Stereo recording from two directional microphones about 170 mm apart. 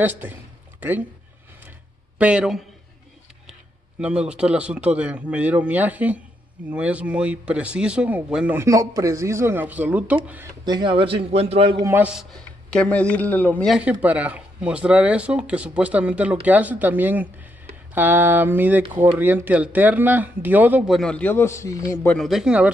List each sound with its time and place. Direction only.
0.0 s a sound: 10° right (ahead or behind)
2.1 s speech: 5° right (ahead or behind)
4.0 s speech: 5° right (ahead or behind)
8.5 s speech: 20° right (ahead or behind)
10.6 s a man's voice: 25° right (ahead or behind)
11.8 s speech: 15° right (ahead or behind)
12.2 s speech: 5° left (ahead or behind)
13.7 s speech: 5° right (ahead or behind); by 22.1 s 15° left (ahead or behind)
22.1 s speech: centre (ahead or behind)